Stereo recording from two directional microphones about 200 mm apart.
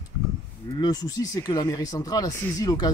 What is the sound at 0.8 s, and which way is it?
Speech, 20° left (ahead or behind).